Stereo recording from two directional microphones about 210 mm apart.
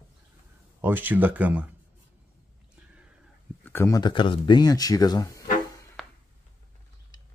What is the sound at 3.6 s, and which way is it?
Speech, 15° left (ahead or behind).